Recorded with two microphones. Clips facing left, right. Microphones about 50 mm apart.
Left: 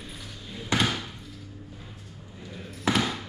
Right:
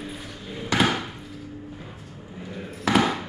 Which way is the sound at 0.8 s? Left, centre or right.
Right.